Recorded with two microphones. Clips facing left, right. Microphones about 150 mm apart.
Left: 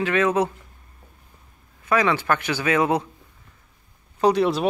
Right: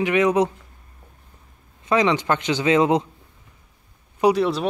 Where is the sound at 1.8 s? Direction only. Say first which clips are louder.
Right 2 dB; 20° right (ahead or behind).